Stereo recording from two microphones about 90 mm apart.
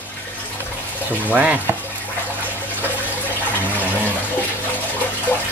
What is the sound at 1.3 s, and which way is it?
Stir, 15° right (ahead or behind).